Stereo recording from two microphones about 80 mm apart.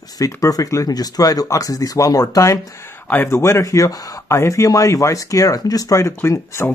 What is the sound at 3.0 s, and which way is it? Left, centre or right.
Speech, left.